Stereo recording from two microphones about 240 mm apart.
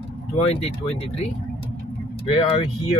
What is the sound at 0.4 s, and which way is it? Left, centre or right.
Speech, left.